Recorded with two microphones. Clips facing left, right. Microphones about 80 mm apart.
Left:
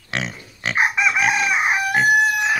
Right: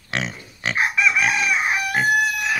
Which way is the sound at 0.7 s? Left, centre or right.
Left.